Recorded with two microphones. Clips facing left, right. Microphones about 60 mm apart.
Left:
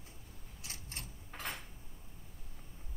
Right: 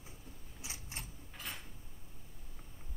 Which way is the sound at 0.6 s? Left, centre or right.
Centre.